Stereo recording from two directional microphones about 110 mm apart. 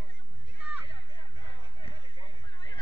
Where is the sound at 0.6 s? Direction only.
15° right (ahead or behind).